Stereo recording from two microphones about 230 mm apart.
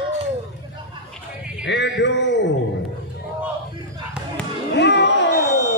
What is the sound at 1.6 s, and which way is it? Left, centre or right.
Speech, left.